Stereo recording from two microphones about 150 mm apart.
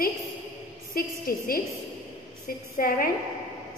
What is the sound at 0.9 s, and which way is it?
Speech, 75° left (ahead or behind).